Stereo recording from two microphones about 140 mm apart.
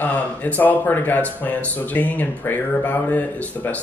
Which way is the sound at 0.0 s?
10° left (ahead or behind).